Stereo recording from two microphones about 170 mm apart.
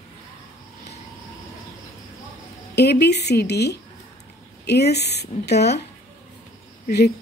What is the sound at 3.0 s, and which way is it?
Speech, 80° left.